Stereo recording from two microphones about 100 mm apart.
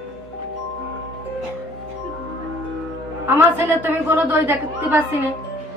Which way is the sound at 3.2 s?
20° right (ahead or behind).